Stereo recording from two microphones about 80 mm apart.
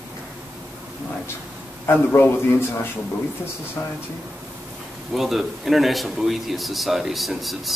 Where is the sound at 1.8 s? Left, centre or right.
Left.